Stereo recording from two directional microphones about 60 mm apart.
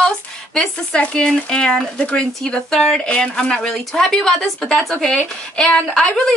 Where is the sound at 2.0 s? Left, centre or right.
Left.